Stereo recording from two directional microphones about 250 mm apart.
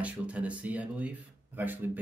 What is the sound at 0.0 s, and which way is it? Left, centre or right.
Speech, centre.